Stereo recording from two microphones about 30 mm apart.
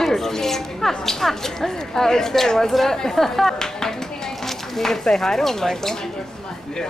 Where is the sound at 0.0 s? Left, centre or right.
Centre.